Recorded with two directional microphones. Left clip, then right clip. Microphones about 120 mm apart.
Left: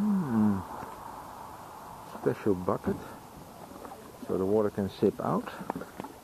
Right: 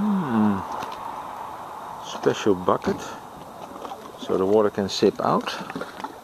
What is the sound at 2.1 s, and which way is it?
Speech, 35° right (ahead or behind).